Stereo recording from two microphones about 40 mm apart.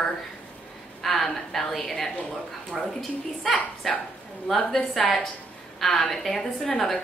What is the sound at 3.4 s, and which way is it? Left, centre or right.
A woman's voice, centre.